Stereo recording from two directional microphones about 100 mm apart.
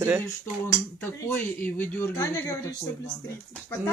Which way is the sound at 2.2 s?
30° left (ahead or behind).